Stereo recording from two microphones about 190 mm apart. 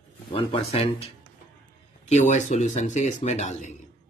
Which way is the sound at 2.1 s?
35° left (ahead or behind).